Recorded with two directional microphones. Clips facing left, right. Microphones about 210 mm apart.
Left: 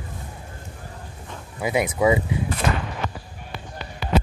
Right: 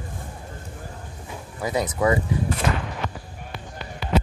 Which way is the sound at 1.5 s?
10° left (ahead or behind).